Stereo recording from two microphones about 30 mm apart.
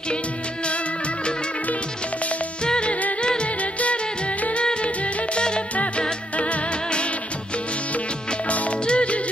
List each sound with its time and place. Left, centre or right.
2.6 s music: left
3.8 s music: left
4.8 s music: left
6.3 s music: left
8.5 s music: left